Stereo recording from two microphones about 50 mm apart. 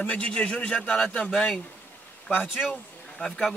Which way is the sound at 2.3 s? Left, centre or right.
Left.